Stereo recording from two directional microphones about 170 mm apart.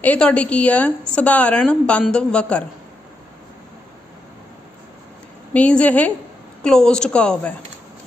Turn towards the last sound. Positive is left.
turn(degrees=5)  # may be behind; listen again after turning